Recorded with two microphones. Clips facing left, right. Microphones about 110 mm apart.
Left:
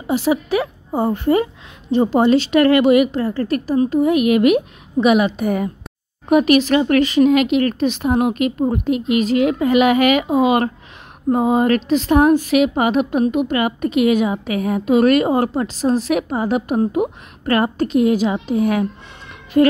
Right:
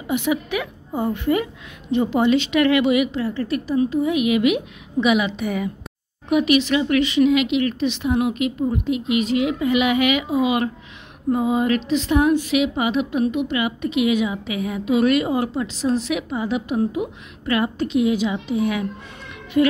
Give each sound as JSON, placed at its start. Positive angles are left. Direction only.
{"t": 0.0, "sound": "a woman's voice", "side_deg": 35}